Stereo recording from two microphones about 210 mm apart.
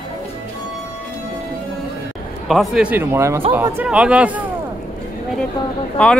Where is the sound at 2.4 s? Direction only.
Centre (ahead or behind).